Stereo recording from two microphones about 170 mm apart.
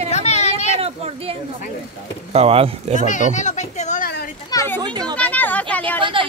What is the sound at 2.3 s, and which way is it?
Speech, 35° right (ahead or behind).